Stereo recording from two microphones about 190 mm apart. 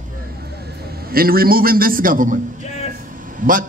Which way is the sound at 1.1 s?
50° right (ahead or behind).